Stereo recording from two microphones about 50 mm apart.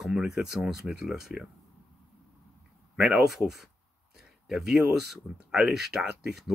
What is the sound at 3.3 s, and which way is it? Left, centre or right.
Speech, centre.